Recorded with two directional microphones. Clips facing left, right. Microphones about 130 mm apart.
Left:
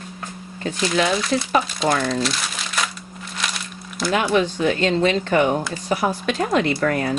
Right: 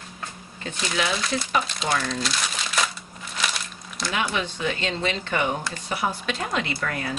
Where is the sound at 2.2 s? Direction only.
Centre (ahead or behind).